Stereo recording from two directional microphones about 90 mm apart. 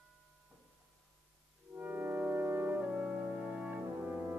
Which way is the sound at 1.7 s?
20° right (ahead or behind).